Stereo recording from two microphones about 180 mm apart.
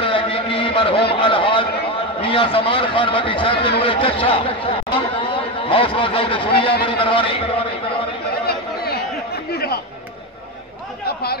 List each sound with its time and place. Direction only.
0.0 s a sound: 30° left (ahead or behind)
2.2 s a man's voice: 30° left (ahead or behind)
8.5 s chatter: 60° left (ahead or behind)